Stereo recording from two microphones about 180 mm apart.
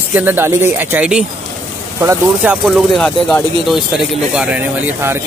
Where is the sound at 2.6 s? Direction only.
Centre (ahead or behind).